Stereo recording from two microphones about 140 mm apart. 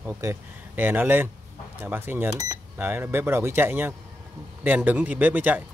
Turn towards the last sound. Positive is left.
turn(degrees=-10)  # may be behind; listen again after turning